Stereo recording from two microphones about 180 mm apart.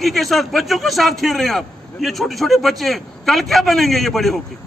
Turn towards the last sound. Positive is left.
turn(degrees=0)  # may be behind; listen again after turning